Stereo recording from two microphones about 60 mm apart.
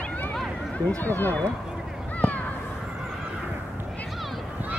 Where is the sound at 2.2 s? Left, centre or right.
Left.